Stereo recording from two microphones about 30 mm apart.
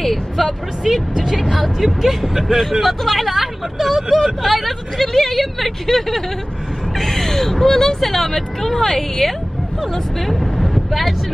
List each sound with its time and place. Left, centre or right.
0.0 s speech: centre
1.2 s speech: centre
2.8 s speech: centre
7.0 s gasp: centre
7.7 s speech: centre
10.2 s vehicle: centre